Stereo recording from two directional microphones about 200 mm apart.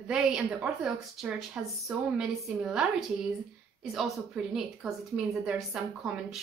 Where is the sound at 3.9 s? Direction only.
Centre (ahead or behind).